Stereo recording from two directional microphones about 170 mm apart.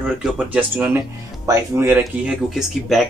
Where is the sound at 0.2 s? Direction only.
5° right (ahead or behind).